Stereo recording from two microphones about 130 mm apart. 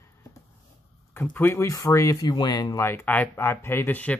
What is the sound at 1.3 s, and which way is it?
Speech, 15° left (ahead or behind).